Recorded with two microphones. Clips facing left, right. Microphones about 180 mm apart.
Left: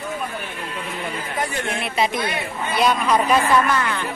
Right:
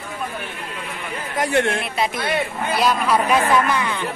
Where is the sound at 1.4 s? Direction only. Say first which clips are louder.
Right 8 dB; 80° right.